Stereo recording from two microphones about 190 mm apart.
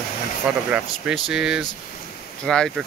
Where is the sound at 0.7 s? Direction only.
5° right (ahead or behind).